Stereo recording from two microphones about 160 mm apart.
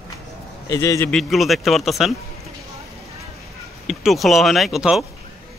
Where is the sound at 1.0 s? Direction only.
Centre (ahead or behind).